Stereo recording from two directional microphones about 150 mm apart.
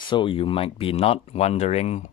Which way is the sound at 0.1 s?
35° left (ahead or behind).